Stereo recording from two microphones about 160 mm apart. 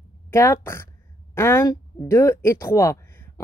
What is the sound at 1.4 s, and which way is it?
Speech, 15° left (ahead or behind).